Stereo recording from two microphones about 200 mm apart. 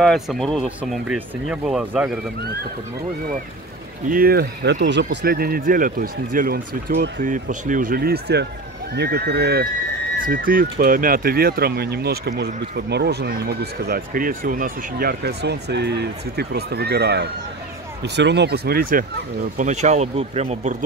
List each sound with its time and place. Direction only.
0.0 s speech: centre (ahead or behind)
4.1 s speech: 50° right (ahead or behind)
10.1 s speech: 45° right (ahead or behind)